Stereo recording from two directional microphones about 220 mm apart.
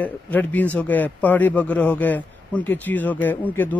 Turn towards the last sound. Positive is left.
turn(degrees=10)  # may be behind; listen again after turning